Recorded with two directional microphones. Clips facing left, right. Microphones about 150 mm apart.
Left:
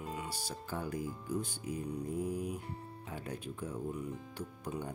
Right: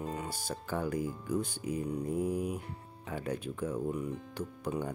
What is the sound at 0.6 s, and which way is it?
Speech, 70° right (ahead or behind).